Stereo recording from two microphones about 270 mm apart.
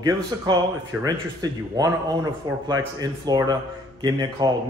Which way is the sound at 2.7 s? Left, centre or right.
Centre.